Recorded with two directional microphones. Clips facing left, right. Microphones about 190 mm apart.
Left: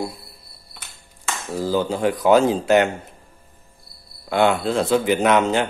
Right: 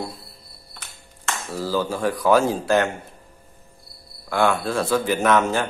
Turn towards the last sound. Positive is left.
turn(degrees=20)  # may be behind; listen again after turning